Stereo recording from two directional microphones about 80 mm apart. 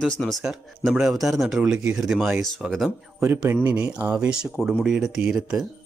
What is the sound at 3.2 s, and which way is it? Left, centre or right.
Speech, right.